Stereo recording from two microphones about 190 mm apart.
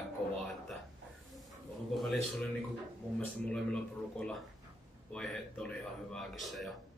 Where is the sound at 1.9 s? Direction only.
Centre (ahead or behind).